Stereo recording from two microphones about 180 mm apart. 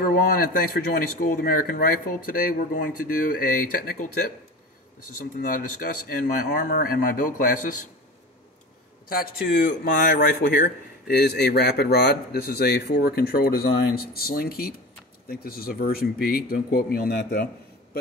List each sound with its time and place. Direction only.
0.0 s speech: 50° left (ahead or behind)
5.1 s speech: 50° left (ahead or behind)
9.1 s speech: 50° left (ahead or behind)